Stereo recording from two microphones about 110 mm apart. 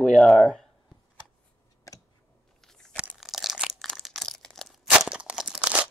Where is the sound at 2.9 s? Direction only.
5° right (ahead or behind).